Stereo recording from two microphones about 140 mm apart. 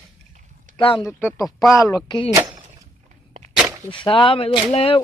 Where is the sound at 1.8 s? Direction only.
25° left (ahead or behind).